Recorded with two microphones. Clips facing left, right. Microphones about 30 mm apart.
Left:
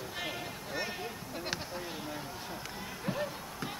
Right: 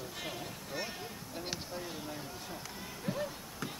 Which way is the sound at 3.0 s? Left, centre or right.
Left.